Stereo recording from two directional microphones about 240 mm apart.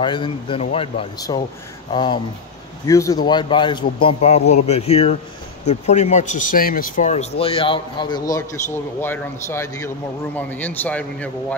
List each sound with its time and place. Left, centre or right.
0.0 s a man's voice: centre